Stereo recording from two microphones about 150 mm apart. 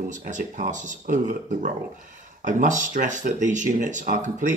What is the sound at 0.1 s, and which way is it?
Speech, 60° right (ahead or behind).